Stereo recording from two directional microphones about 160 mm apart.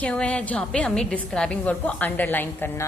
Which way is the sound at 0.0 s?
10° left (ahead or behind).